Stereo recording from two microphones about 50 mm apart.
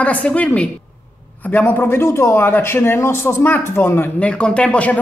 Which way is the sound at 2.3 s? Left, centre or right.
Left.